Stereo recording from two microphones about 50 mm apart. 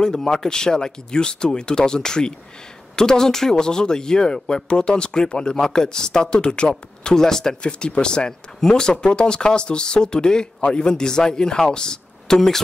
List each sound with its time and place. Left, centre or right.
0.0 s speech: centre